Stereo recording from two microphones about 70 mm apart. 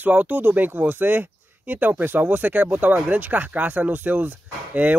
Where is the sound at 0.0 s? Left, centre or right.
Right.